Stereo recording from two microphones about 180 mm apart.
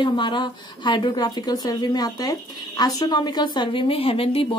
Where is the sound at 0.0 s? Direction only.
25° left (ahead or behind).